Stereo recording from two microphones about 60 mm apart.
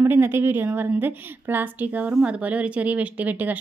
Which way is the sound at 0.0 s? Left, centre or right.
Right.